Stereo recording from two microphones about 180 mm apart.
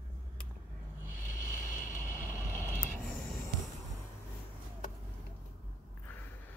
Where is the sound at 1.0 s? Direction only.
50° left (ahead or behind).